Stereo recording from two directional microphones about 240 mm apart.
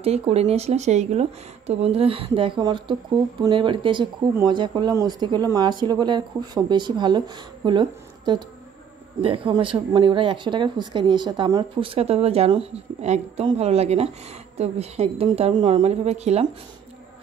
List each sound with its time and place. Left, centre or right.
0.0 s speech: right